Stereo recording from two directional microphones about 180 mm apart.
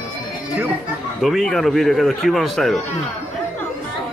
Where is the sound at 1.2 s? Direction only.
Centre (ahead or behind).